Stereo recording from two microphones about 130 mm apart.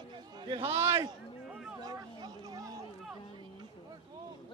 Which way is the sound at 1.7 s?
30° right (ahead or behind).